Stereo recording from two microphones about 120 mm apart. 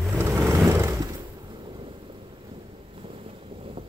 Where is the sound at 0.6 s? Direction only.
35° right (ahead or behind).